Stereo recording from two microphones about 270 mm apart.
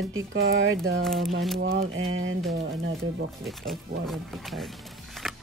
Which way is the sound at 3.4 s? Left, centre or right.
Centre.